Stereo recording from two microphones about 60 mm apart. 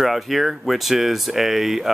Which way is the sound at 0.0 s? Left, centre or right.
Centre.